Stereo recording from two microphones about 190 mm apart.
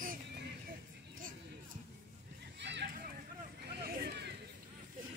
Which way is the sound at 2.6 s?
65° right (ahead or behind).